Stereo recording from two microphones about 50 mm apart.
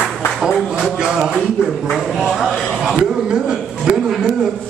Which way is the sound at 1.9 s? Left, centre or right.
Centre.